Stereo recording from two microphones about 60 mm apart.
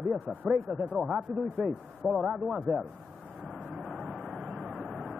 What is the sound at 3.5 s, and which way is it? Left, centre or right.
Vehicle, right.